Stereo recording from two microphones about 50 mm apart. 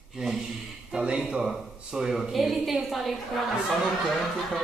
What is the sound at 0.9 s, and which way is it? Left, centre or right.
A man's voice, centre.